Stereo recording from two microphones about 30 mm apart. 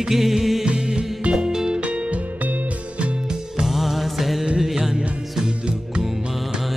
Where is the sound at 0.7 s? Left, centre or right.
Right.